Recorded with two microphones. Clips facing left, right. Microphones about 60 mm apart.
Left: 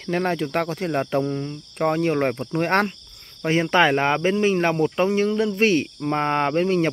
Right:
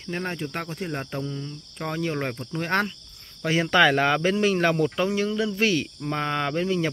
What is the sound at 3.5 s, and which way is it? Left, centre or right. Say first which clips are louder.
Speech: left 1 dB; left.